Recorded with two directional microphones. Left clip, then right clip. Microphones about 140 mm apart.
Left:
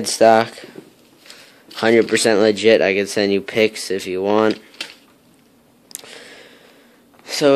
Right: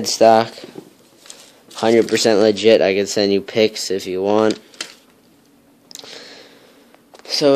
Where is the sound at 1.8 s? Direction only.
5° right (ahead or behind).